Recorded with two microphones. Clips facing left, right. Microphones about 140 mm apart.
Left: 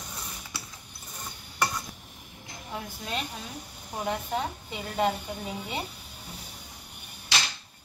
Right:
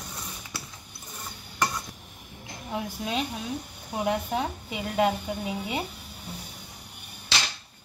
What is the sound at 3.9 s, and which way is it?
A woman's voice, 10° right (ahead or behind).